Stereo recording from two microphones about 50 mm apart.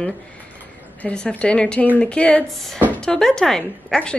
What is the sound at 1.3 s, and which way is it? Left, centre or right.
Speech, left.